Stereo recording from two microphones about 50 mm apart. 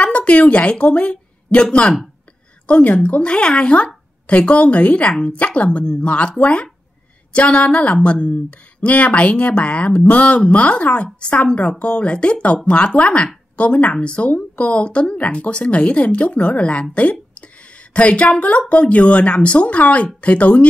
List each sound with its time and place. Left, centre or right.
0.0 s a woman's voice: left
3.2 s speech: centre
16.9 s a sound: left
17.9 s speech: left